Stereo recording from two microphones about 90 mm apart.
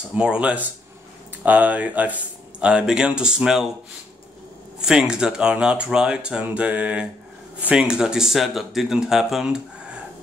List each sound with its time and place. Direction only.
0.1 s speech: 10° right (ahead or behind)
4.8 s speech: 10° right (ahead or behind)